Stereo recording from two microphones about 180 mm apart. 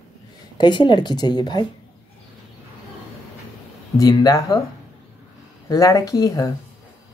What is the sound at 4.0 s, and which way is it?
Speech, 20° left (ahead or behind).